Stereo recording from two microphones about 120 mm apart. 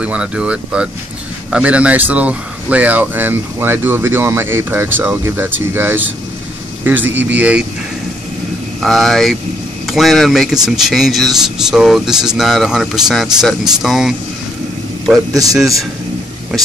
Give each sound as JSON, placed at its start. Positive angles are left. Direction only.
{"t": 0.0, "sound": "speech", "side_deg": -10}
{"t": 8.8, "sound": "a man's voice", "side_deg": 0}
{"t": 15.3, "sound": "a man's voice", "side_deg": -30}